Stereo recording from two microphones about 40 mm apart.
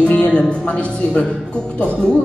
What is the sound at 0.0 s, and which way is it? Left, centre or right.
A woman's voice, left.